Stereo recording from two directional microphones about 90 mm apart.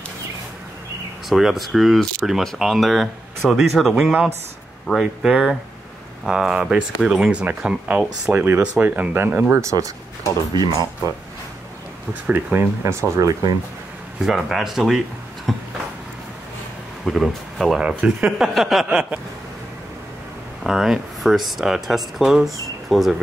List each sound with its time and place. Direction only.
1.3 s speech: centre (ahead or behind); by 9.6 s 25° right (ahead or behind)
9.6 s speech: 35° right (ahead or behind)
10.5 s speech: 50° right (ahead or behind)
12.1 s speech: 15° right (ahead or behind)
13.2 s speech: 40° right (ahead or behind)
14.2 s speech: 5° right (ahead or behind)
15.5 s a sound: centre (ahead or behind)
17.0 s speech: centre (ahead or behind)
18.9 s speech: 10° right (ahead or behind)
20.6 s speech: 5° right (ahead or behind)